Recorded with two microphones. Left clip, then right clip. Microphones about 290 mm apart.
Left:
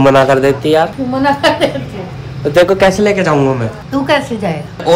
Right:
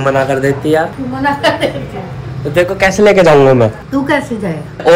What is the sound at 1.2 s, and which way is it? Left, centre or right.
A woman's voice, left.